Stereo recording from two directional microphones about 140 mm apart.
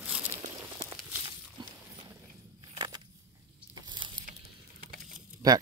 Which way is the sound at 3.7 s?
30° right (ahead or behind).